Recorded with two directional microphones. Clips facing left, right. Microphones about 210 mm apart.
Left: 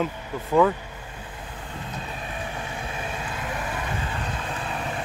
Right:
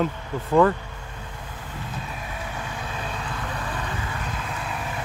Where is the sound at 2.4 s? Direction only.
25° left (ahead or behind).